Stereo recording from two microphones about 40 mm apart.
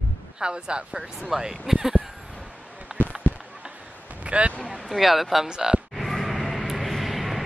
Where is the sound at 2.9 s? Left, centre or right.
Centre.